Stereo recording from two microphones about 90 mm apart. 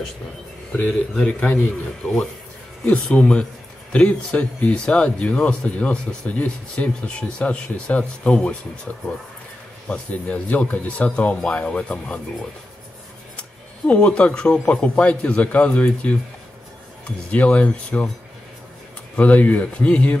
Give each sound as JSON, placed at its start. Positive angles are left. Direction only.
{"t": 1.1, "sound": "speech", "side_deg": 15}
{"t": 2.8, "sound": "speech", "side_deg": 15}
{"t": 9.8, "sound": "speech", "side_deg": 15}
{"t": 13.4, "sound": "speech", "side_deg": 10}
{"t": 17.3, "sound": "speech", "side_deg": 15}
{"t": 19.1, "sound": "speech", "side_deg": 15}